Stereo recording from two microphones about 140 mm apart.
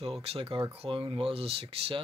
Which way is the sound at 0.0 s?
45° right (ahead or behind).